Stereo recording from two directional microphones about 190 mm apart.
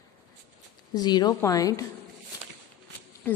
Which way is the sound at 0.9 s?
20° left (ahead or behind).